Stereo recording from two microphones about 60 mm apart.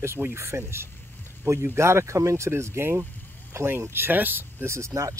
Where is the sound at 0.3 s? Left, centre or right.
Right.